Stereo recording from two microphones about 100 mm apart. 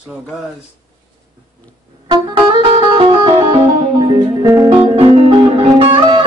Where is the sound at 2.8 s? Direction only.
60° right (ahead or behind).